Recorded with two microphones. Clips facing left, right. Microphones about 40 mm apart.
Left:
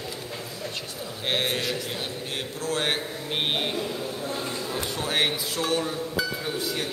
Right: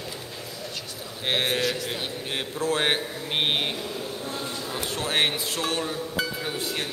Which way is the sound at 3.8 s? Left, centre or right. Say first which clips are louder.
Left 2 dB; centre.